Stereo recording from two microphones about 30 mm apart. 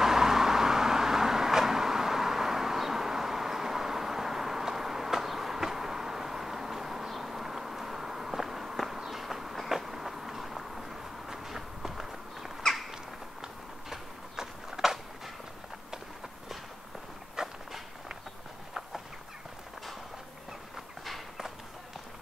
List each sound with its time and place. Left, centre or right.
0.0 s vehicle: centre
9.1 s train: centre
13.4 s horse: centre
17.4 s walk: centre